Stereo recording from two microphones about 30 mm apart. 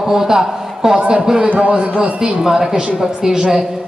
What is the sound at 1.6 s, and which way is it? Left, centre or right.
Speech, right.